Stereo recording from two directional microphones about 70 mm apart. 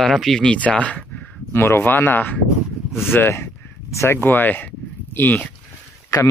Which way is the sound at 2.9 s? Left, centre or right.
Centre.